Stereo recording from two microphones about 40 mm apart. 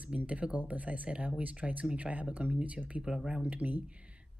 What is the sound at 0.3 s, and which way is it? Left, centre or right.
Speech, right.